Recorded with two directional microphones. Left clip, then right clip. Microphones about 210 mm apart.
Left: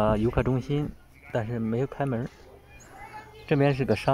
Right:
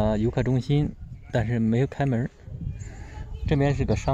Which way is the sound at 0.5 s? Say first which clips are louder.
Right 3 dB; 20° right (ahead or behind).